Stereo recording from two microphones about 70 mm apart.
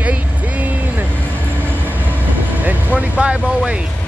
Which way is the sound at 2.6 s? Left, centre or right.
Right.